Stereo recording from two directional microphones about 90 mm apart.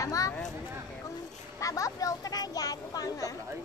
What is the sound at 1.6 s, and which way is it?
Speech, 40° left (ahead or behind).